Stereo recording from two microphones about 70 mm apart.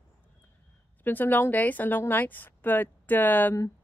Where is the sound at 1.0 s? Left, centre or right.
Left.